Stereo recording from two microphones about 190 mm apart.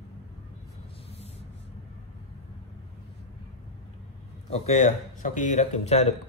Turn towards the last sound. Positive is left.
turn(degrees=35)  # may be behind; listen again after turning